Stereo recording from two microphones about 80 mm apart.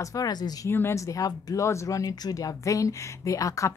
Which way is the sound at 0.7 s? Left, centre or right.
Left.